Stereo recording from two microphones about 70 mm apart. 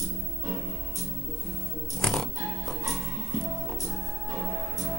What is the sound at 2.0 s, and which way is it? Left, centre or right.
Music, centre.